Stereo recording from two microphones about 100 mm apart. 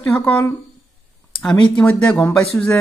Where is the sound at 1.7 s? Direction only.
10° left (ahead or behind).